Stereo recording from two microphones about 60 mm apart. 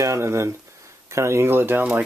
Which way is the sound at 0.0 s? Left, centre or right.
Right.